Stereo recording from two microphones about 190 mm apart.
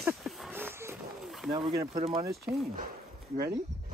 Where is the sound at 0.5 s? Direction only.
10° right (ahead or behind).